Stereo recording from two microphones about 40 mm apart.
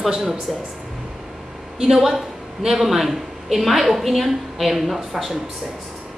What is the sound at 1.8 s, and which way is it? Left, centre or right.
Speech, centre.